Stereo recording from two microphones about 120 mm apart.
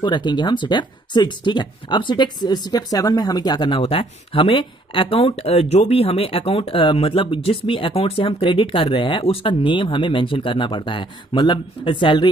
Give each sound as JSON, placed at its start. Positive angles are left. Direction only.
{"t": 0.0, "sound": "speech", "side_deg": 40}
{"t": 3.8, "sound": "speech", "side_deg": 55}